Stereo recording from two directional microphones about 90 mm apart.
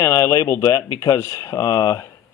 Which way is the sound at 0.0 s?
35° left (ahead or behind).